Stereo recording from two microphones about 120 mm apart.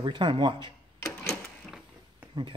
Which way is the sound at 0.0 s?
40° right (ahead or behind).